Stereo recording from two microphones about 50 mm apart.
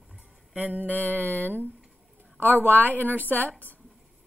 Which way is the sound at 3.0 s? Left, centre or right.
Right.